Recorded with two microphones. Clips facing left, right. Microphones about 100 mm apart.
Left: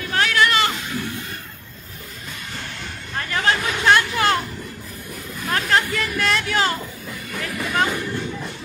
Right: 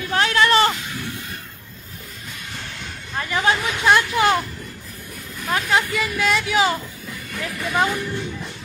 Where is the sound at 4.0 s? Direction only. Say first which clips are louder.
Right 2 dB; 15° right (ahead or behind).